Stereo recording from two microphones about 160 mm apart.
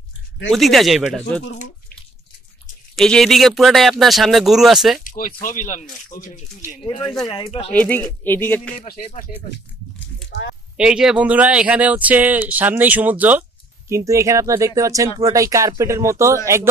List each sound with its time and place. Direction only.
0.5 s speech: centre (ahead or behind)
3.0 s speech: centre (ahead or behind)
5.0 s speech: 60° left (ahead or behind)
6.8 s speech: 30° left (ahead or behind)
7.7 s music: 10° left (ahead or behind)
8.7 s speech: 65° left (ahead or behind)
10.8 s speech: 5° right (ahead or behind)